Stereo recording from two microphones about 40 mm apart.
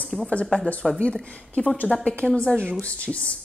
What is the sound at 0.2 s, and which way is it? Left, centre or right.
Speech, left.